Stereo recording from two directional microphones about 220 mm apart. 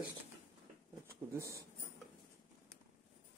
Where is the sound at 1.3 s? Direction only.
15° right (ahead or behind).